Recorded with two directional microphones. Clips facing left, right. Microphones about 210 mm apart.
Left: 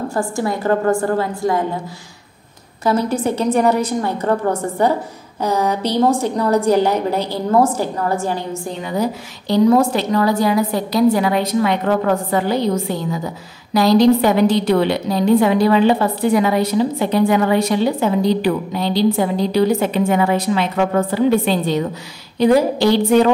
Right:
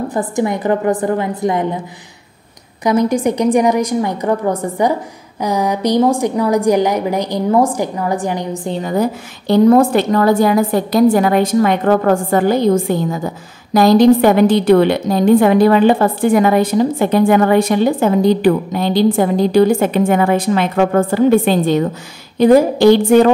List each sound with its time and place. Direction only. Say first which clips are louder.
0.1 s a woman's voice: right 3 dB; 20° right (ahead or behind)
2.8 s a woman's voice: right 4 dB; 15° right (ahead or behind)
8.8 s a woman's voice: right 3 dB; 50° right (ahead or behind)